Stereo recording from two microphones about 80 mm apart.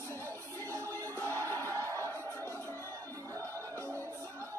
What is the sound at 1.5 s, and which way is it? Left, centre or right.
Music, left.